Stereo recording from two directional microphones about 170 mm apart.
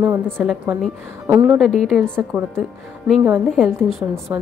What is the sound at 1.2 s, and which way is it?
Speech, 15° right (ahead or behind).